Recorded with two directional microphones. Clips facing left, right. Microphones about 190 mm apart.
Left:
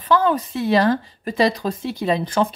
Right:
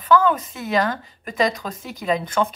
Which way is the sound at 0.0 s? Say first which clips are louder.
Right 1 dB; 30° left (ahead or behind).